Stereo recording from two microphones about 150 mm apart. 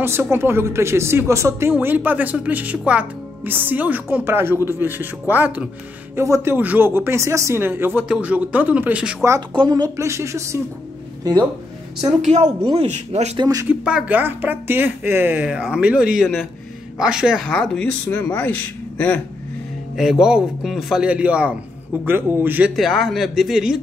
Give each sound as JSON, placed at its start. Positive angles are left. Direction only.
{"t": 0.0, "sound": "speech", "side_deg": -15}
{"t": 9.5, "sound": "speech", "side_deg": -30}
{"t": 12.2, "sound": "speech", "side_deg": -50}
{"t": 13.4, "sound": "speech", "side_deg": -25}
{"t": 13.7, "sound": "a man's voice", "side_deg": -10}
{"t": 17.5, "sound": "speech", "side_deg": 5}
{"t": 20.0, "sound": "a man's voice", "side_deg": -5}
{"t": 22.8, "sound": "a man's voice", "side_deg": 0}